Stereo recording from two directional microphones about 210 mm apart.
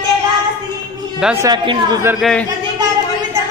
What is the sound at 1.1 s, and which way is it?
Speech, 5° right (ahead or behind).